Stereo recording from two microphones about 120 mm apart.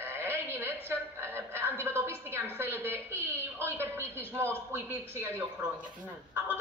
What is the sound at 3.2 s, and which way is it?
Speech, 15° left (ahead or behind).